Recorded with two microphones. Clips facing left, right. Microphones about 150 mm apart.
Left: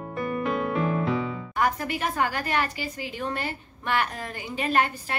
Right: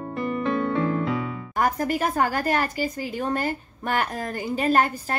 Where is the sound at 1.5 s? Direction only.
45° right (ahead or behind).